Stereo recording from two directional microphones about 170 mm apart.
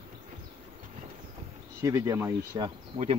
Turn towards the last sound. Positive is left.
turn(degrees=-35)  # may be behind; listen again after turning